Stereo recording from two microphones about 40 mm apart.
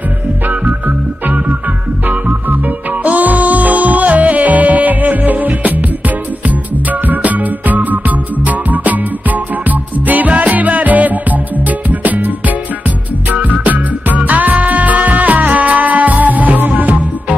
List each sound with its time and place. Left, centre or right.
0.5 s music: right
3.0 s music: right